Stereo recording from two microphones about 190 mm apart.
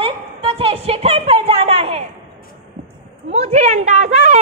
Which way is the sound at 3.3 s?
35° right (ahead or behind).